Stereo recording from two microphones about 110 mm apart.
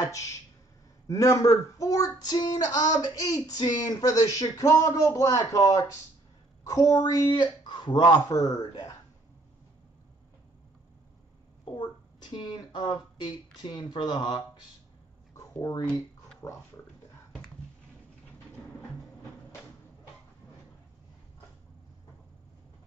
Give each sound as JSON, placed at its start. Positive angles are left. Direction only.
{"t": 1.0, "sound": "speech", "side_deg": 30}
{"t": 11.6, "sound": "speech", "side_deg": 45}
{"t": 15.3, "sound": "a sound", "side_deg": 35}
{"t": 16.4, "sound": "pig", "side_deg": 30}